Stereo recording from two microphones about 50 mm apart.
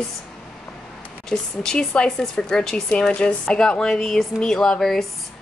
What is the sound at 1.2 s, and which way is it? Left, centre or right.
Speech, centre.